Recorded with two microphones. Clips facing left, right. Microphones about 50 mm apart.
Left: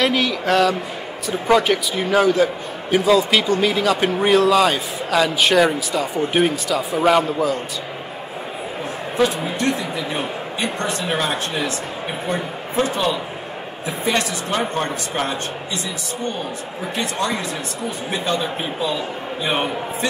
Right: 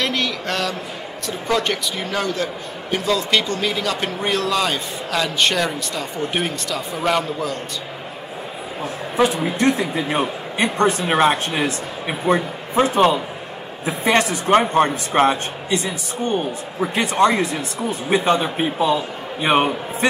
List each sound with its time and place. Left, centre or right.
0.0 s a man's voice: centre
9.1 s a woman's voice: right
9.8 s a man's voice: right
12.9 s speech: right